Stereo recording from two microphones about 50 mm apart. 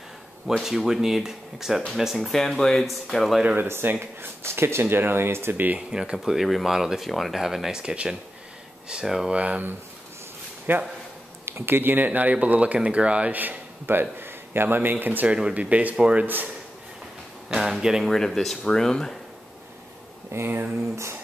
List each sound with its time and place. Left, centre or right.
0.5 s speech: centre
4.0 s speech: right
5.8 s speech: centre
6.1 s speech: centre
7.8 s speech: centre
9.3 s speech: right
10.7 s speech: right
13.4 s a man's voice: right
15.2 s speech: right
17.5 s speech: centre
18.0 s speech: centre
20.4 s speech: right
20.9 s music: right